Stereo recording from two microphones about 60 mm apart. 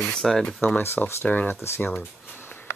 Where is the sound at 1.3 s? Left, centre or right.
Left.